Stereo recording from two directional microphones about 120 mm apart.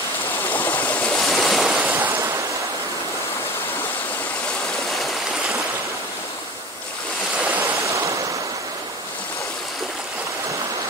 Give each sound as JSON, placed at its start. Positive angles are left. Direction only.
{"t": 0.5, "sound": "stream", "side_deg": 15}
{"t": 1.1, "sound": "waves", "side_deg": 0}
{"t": 2.0, "sound": "waves", "side_deg": -15}
{"t": 7.8, "sound": "waves", "side_deg": -25}